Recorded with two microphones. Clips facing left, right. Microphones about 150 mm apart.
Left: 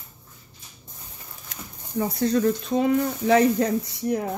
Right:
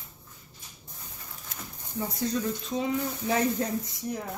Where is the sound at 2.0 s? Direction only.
65° left (ahead or behind).